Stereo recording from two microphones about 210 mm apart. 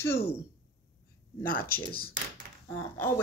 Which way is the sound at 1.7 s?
45° left (ahead or behind).